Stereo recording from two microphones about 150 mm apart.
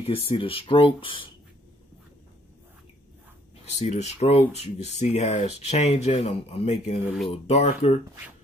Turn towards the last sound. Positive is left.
turn(degrees=45)  # may be behind; listen again after turning